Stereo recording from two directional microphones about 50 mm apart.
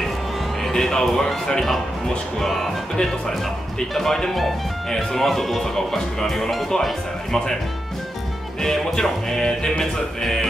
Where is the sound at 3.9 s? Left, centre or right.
Centre.